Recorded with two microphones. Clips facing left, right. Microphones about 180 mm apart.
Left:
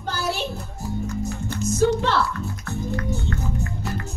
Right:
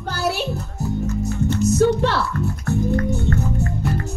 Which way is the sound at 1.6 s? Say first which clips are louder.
Right 3 dB; 65° right (ahead or behind).